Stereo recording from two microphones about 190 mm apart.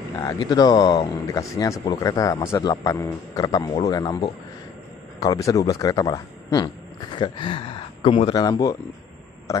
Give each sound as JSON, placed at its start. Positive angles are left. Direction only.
{"t": 0.2, "sound": "speech", "side_deg": 20}